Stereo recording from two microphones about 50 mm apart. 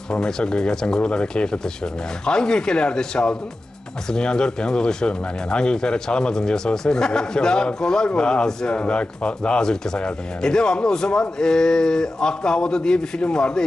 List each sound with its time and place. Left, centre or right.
0.1 s speech: centre